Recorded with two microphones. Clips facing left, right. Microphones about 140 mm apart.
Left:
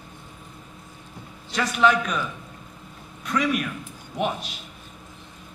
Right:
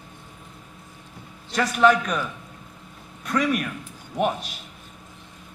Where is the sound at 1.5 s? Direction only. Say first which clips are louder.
Right 2 dB; 45° right (ahead or behind).